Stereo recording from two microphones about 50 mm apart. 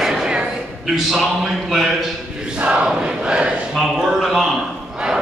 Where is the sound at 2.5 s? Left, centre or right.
Right.